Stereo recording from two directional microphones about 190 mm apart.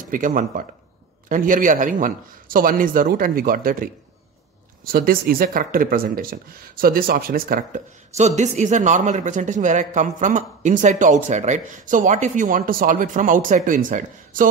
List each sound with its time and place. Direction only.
0.1 s speech: 45° right (ahead or behind)